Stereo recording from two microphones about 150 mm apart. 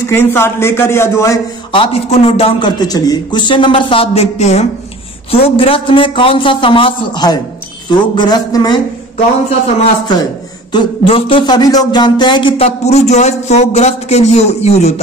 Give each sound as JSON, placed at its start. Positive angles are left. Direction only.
{"t": 0.0, "sound": "a man's voice", "side_deg": 15}
{"t": 1.7, "sound": "a man's voice", "side_deg": 40}
{"t": 2.8, "sound": "a man's voice", "side_deg": 25}
{"t": 9.8, "sound": "speech", "side_deg": 30}
{"t": 10.7, "sound": "a sound", "side_deg": 35}